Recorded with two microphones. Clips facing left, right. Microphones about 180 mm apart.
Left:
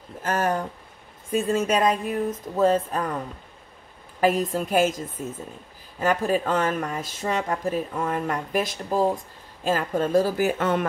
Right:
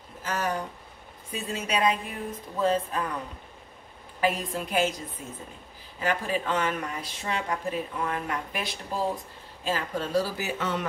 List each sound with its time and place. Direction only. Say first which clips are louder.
0.2 s speech: left 5 dB; 50° left (ahead or behind)
4.2 s speech: left 6 dB; 45° left (ahead or behind)